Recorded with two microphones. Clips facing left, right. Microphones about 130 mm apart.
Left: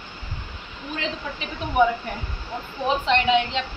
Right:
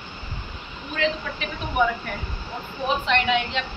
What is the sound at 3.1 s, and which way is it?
Speech, 30° left (ahead or behind).